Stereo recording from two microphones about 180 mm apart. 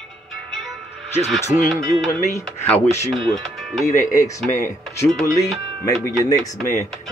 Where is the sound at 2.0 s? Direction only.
15° left (ahead or behind).